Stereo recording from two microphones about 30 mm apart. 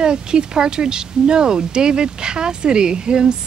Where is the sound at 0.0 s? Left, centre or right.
Right.